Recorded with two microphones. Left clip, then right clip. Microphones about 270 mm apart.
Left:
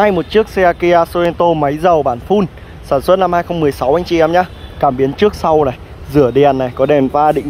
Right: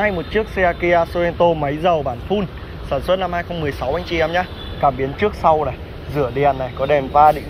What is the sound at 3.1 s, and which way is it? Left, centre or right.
Speech, left.